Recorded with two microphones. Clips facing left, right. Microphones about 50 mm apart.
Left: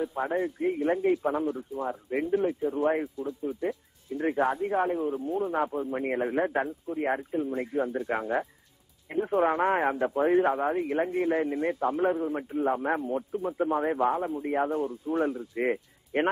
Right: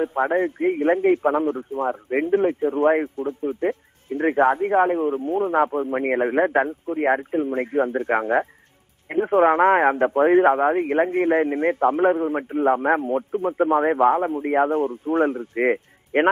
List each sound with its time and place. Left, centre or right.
0.0 s a man's voice: right